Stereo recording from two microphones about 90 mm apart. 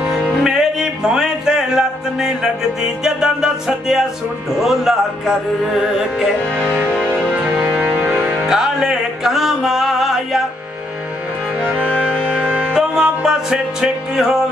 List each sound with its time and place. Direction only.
0.0 s music: 5° right (ahead or behind)
6.5 s speech: 20° right (ahead or behind)
6.9 s music: 10° left (ahead or behind)
7.6 s music: 20° right (ahead or behind)
8.5 s music: 5° right (ahead or behind)
11.9 s music: 10° left (ahead or behind)
12.4 s music: 20° right (ahead or behind)
12.7 s music: 5° right (ahead or behind)